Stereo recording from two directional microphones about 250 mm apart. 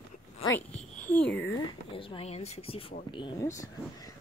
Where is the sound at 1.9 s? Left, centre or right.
Left.